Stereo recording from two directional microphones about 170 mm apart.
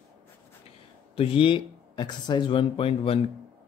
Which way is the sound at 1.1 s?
35° left (ahead or behind).